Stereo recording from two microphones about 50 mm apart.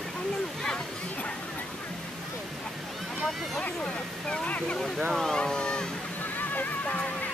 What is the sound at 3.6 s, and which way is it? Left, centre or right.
Speech, left.